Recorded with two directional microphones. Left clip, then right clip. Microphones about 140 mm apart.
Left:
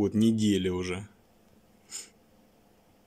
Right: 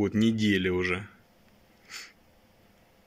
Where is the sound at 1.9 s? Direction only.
20° left (ahead or behind).